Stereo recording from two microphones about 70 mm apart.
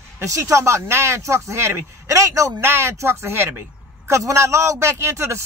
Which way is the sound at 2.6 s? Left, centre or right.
Right.